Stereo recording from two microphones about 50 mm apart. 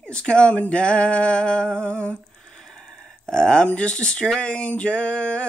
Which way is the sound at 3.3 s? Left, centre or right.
Centre.